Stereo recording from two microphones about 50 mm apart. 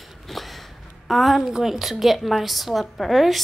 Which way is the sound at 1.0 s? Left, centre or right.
Centre.